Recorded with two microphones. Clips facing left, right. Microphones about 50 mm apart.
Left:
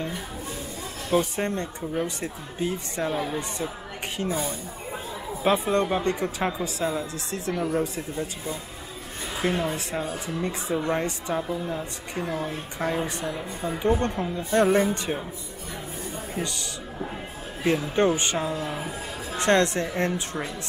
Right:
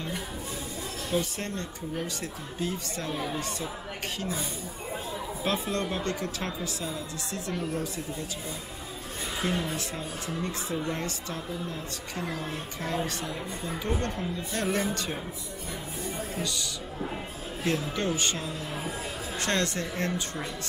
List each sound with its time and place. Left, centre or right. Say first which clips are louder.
1.1 s a woman's voice: left 7 dB; left
9.4 s a woman's voice: left 5 dB; left
17.9 s a woman's voice: left 7 dB; left